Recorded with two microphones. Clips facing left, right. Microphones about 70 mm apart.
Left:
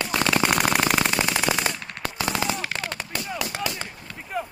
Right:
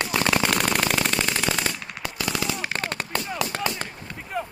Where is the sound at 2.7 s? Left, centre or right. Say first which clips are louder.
Right 2 dB; right.